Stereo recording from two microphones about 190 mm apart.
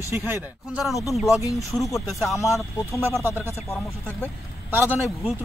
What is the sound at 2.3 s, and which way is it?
Speech, 15° left (ahead or behind).